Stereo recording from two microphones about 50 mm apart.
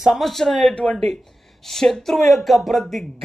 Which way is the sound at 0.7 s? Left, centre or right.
Left.